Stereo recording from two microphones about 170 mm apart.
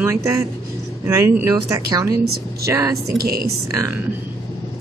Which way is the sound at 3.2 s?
60° right (ahead or behind).